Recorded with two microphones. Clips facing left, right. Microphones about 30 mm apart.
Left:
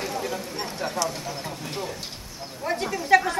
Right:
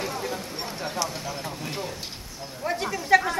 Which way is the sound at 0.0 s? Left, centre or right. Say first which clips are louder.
Left 1 dB; centre.